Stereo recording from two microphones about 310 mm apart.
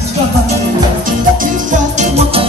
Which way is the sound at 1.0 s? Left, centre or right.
Right.